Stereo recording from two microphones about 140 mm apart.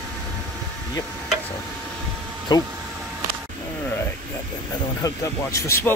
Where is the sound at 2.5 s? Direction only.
30° left (ahead or behind).